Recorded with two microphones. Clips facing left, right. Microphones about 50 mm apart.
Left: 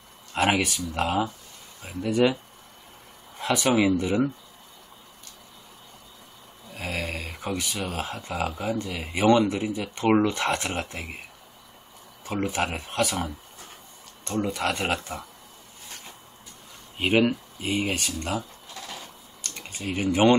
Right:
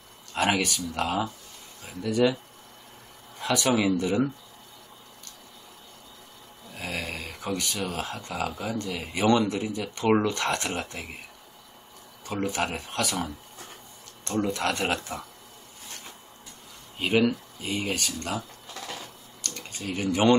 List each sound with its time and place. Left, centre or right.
0.3 s speech: centre
3.3 s speech: centre
6.7 s speech: centre
12.3 s speech: centre
17.0 s speech: left
19.4 s typing: centre